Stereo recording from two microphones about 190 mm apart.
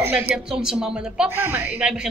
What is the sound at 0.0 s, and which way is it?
A man's voice, 5° right (ahead or behind).